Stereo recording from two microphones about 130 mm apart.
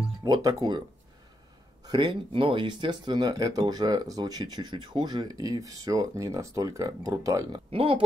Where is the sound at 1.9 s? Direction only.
35° right (ahead or behind).